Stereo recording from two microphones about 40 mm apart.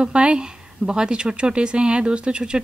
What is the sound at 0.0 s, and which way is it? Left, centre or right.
Speech, right.